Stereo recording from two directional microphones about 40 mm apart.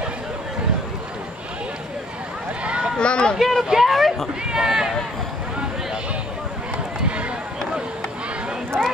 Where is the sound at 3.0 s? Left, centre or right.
Left.